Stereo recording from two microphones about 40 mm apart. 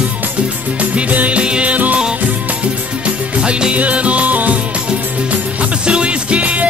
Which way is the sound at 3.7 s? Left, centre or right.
Right.